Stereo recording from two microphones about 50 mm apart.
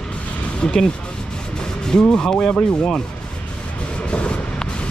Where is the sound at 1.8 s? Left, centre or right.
Centre.